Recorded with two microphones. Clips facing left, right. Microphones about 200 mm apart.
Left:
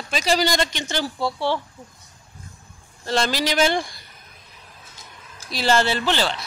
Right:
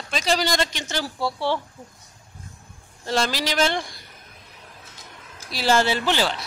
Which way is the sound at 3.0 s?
5° right (ahead or behind).